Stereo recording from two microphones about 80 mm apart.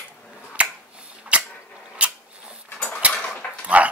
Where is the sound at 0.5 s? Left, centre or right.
Centre.